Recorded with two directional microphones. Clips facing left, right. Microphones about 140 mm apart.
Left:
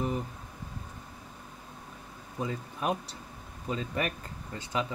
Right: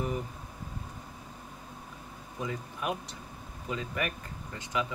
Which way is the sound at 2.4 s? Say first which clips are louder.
Left 2 dB; 35° left (ahead or behind).